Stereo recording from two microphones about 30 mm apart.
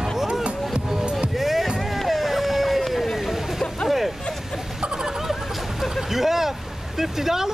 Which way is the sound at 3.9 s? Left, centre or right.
Centre.